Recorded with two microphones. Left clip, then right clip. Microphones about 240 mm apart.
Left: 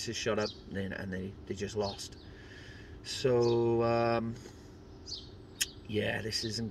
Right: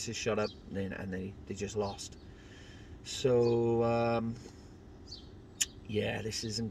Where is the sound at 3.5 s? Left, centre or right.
Left.